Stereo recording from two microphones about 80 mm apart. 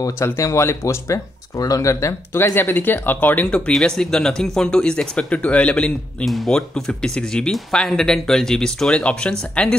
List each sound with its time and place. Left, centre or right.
0.2 s speech: left; by 5.9 s centre
6.2 s speech: centre